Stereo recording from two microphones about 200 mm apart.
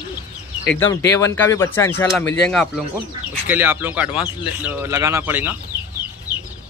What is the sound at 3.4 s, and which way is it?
Speech, 10° right (ahead or behind).